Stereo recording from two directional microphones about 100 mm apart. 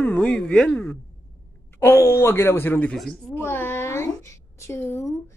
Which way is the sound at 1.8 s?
25° left (ahead or behind).